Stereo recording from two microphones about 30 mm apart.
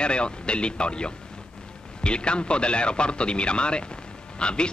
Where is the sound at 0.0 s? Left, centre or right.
Left.